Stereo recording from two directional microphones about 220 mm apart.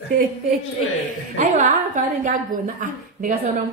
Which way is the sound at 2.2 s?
40° right (ahead or behind).